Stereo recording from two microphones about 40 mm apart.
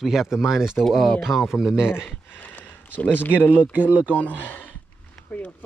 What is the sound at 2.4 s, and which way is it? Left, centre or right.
Speech, left.